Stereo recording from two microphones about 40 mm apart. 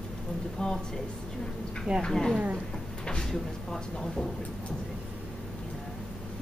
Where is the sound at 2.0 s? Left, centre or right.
Centre.